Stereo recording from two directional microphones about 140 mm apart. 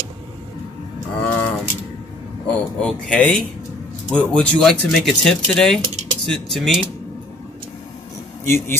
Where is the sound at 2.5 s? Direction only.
5° left (ahead or behind).